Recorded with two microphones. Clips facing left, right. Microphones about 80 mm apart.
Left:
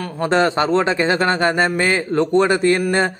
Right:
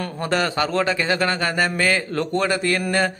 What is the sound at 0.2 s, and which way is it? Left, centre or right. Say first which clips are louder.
A man's voice: left 6 dB; left.